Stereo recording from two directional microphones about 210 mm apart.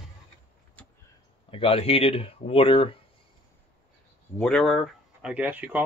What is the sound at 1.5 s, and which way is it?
Speech, 25° left (ahead or behind).